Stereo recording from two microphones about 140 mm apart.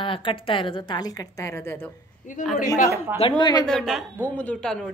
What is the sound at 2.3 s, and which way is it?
Speech, 60° left (ahead or behind).